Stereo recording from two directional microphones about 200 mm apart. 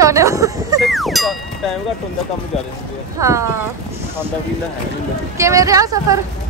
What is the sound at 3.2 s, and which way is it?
Speech, 15° right (ahead or behind).